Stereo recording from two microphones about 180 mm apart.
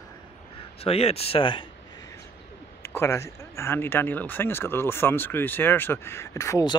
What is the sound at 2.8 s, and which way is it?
Speech, 15° left (ahead or behind).